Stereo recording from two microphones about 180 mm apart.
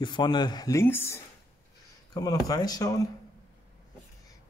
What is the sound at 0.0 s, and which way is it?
Speech, 25° left (ahead or behind).